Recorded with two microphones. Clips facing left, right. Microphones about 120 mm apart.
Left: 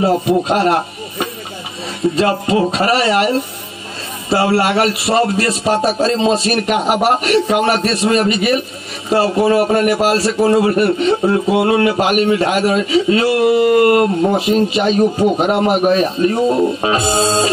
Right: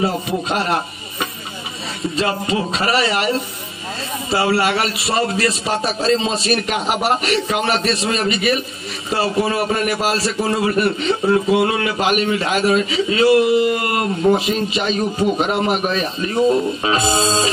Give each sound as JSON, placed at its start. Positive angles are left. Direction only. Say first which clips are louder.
{"t": 0.0, "sound": "a man's voice", "louder": "left 7 dB", "side_deg": 50}